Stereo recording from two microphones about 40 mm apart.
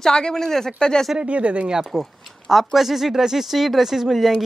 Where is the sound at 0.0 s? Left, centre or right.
Centre.